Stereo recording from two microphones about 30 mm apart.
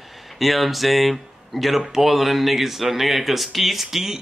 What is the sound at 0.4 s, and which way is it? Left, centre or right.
Speech, centre.